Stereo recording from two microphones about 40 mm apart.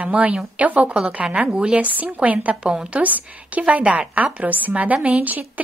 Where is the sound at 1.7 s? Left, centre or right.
Right.